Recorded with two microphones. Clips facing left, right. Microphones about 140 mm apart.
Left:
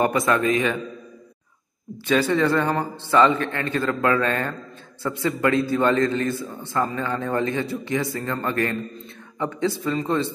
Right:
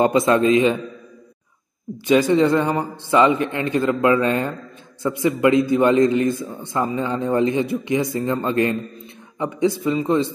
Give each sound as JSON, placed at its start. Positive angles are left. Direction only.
{"t": 0.0, "sound": "a man's voice", "side_deg": -20}
{"t": 2.0, "sound": "a man's voice", "side_deg": -15}